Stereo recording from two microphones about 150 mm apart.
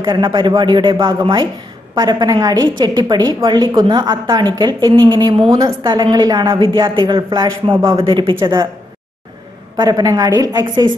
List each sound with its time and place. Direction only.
0.1 s a woman's voice: 30° right (ahead or behind)
7.0 s speech: 35° right (ahead or behind)
9.8 s a woman's voice: 25° right (ahead or behind)